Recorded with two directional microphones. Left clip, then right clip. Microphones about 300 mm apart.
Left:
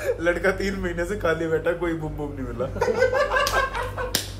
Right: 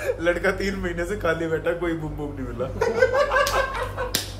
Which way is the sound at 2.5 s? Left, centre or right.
Centre.